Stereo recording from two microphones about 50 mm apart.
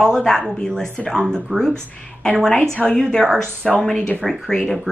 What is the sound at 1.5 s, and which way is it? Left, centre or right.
Speech, centre.